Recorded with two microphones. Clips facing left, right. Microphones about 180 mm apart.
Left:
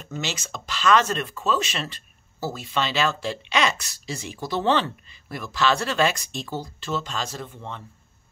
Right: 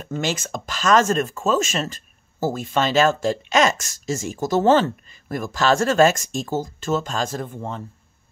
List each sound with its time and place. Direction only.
0.0 s speech: 50° right (ahead or behind)